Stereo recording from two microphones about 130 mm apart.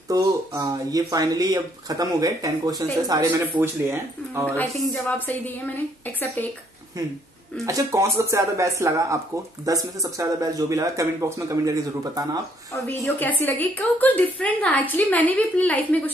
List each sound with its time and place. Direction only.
0.1 s speech: 25° right (ahead or behind)
3.5 s speech: 20° right (ahead or behind)
4.6 s a woman's voice: 15° left (ahead or behind)
7.6 s speech: 25° right (ahead or behind)
12.8 s a woman's voice: 15° left (ahead or behind)